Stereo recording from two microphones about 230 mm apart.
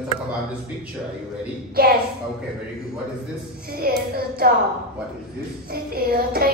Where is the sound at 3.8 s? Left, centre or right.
Right.